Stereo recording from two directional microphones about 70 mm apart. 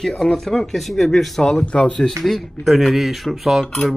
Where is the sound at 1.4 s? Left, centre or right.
Centre.